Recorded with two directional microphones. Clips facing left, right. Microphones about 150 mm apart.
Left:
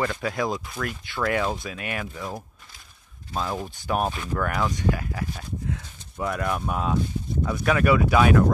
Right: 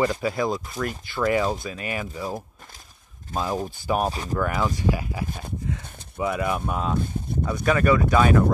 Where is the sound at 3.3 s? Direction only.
45° right (ahead or behind).